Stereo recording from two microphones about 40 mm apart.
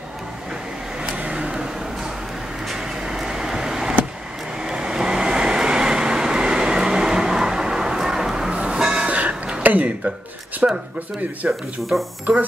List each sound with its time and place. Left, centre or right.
1.0 s vehicle: right
1.5 s vehicle: centre
9.0 s a sound: right
9.6 s a sound: right
10.6 s speech: right
11.4 s speech: right
11.9 s speech: right